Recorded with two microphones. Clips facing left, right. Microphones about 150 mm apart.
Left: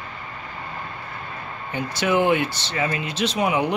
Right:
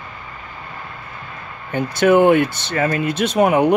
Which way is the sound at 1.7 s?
55° right (ahead or behind).